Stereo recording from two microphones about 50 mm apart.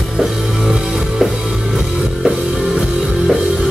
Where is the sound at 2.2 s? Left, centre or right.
Centre.